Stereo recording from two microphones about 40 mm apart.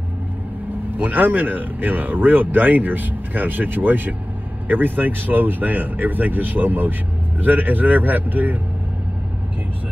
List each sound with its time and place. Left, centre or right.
0.9 s speech: right